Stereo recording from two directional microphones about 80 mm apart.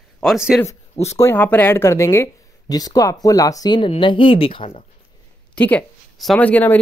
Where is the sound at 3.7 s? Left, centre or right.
Left.